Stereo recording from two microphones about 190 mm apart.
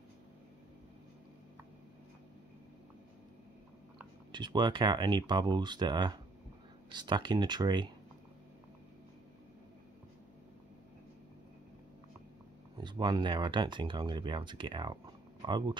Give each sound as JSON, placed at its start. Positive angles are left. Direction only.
{"t": 4.3, "sound": "speech", "side_deg": -25}
{"t": 12.7, "sound": "speech", "side_deg": -25}